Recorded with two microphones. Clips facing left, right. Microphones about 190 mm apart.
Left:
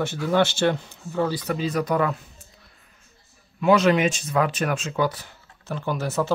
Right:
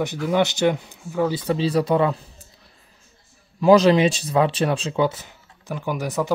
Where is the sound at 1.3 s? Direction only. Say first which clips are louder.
Right 4 dB; 30° right (ahead or behind).